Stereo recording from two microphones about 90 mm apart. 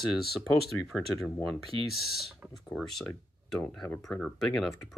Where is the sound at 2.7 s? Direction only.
5° left (ahead or behind).